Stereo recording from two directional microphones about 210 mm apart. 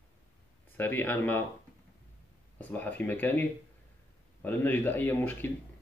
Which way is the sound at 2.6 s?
10° left (ahead or behind).